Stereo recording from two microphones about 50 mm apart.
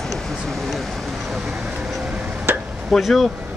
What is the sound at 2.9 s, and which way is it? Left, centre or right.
Speech, centre.